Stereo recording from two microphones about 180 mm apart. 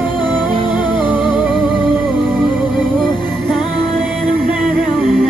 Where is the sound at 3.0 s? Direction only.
25° left (ahead or behind).